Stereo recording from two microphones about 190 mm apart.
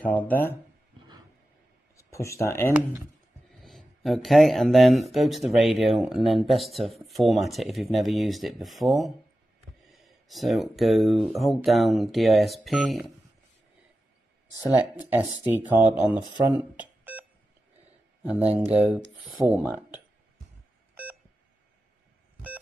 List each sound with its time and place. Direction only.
2.0 s speech: 15° left (ahead or behind)
3.6 s speech: centre (ahead or behind)
15.0 s speech: 10° right (ahead or behind)
16.2 s speech: 20° right (ahead or behind)
16.4 s cash register: 10° right (ahead or behind)
18.2 s speech: 5° right (ahead or behind)
20.9 s beep: 10° right (ahead or behind)